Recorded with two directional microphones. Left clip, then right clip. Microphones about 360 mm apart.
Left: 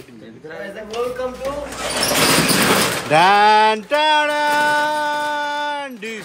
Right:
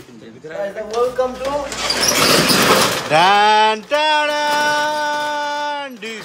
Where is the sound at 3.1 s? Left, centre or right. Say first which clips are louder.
Left 1 dB; centre.